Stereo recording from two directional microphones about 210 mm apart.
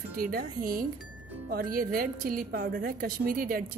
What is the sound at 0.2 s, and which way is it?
A woman's voice, 45° right (ahead or behind).